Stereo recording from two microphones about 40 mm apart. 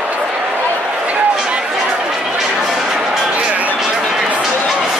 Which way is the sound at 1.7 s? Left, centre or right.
Centre.